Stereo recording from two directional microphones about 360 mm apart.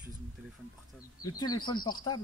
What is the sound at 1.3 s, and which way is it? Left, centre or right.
Speech, centre.